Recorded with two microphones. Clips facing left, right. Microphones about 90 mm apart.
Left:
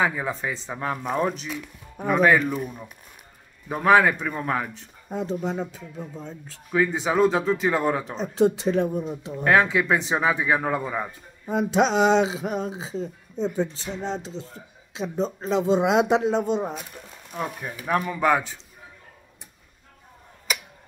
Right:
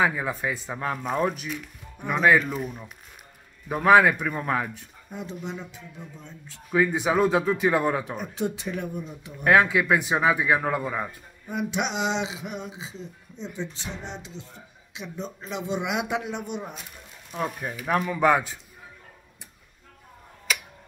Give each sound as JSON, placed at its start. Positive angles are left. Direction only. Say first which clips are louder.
{"t": 0.0, "sound": "speech", "louder": "even", "side_deg": -10}
{"t": 0.7, "sound": "speech", "louder": "left 2 dB", "side_deg": 5}
{"t": 3.6, "sound": "speech", "louder": "even", "side_deg": -5}
{"t": 4.3, "sound": "speech", "louder": "even", "side_deg": 0}
{"t": 5.1, "sound": "speech", "louder": "left 8 dB", "side_deg": 40}
{"t": 6.7, "sound": "speech", "louder": "even", "side_deg": -10}
{"t": 8.2, "sound": "speech", "louder": "left 8 dB", "side_deg": 30}
{"t": 9.4, "sound": "speech", "louder": "even", "side_deg": -5}
{"t": 11.4, "sound": "speech", "louder": "left 7 dB", "side_deg": 35}
{"t": 17.3, "sound": "speech", "louder": "right 1 dB", "side_deg": 0}
{"t": 18.2, "sound": "speech", "louder": "right 2 dB", "side_deg": -15}